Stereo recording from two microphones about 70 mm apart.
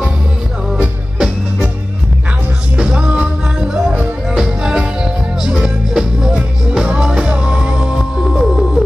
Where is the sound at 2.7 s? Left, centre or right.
Centre.